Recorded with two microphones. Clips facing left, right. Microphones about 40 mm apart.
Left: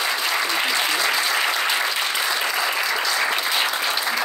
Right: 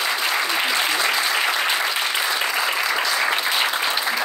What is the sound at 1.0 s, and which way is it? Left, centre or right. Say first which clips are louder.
Applause: even; centre.